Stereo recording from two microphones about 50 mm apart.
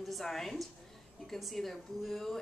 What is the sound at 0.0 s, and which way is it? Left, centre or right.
A woman's voice, centre.